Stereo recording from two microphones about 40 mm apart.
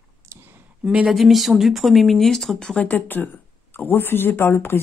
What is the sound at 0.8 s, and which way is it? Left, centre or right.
Speech, right.